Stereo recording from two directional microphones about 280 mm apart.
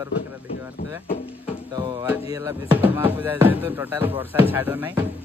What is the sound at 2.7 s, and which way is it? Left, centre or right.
Music, centre.